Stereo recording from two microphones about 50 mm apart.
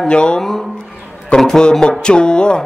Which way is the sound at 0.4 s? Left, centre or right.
Centre.